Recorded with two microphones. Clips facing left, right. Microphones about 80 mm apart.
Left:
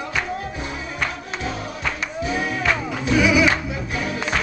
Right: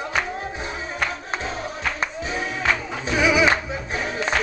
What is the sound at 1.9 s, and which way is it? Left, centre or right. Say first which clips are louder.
Music: left 2 dB; right.